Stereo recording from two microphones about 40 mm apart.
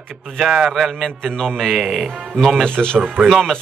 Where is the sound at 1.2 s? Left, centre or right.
Centre.